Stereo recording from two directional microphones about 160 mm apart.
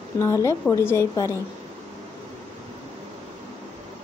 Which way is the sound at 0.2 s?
20° left (ahead or behind).